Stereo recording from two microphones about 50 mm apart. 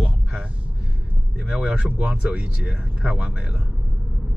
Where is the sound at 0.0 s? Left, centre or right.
Right.